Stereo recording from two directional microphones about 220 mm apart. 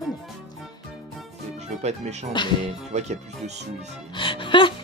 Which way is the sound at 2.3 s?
20° left (ahead or behind).